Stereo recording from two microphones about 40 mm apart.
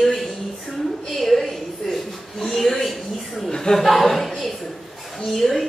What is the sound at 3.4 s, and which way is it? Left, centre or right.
Speech, centre.